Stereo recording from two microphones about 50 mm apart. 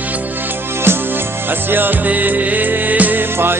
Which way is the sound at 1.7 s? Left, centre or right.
Right.